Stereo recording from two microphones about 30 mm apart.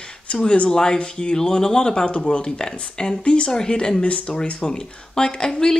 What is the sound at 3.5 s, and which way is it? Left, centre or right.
Speech, left.